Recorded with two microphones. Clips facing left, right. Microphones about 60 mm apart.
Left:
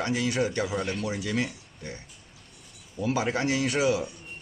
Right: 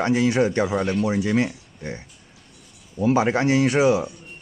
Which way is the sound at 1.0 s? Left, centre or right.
Right.